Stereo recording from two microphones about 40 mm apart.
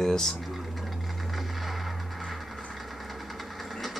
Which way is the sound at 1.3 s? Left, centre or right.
Centre.